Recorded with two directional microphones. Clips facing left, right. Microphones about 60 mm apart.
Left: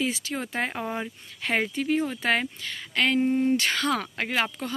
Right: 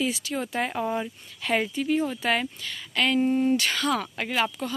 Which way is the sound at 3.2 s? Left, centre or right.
Centre.